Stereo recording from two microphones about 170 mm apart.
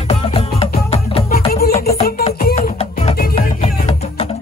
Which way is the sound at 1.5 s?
65° left (ahead or behind).